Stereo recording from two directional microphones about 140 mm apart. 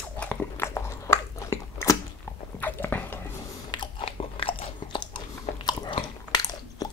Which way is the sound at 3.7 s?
40° left (ahead or behind).